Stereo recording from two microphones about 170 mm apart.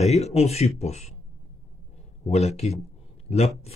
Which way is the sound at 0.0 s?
40° left (ahead or behind).